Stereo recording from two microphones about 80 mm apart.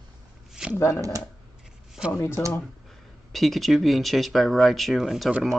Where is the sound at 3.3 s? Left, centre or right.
Centre.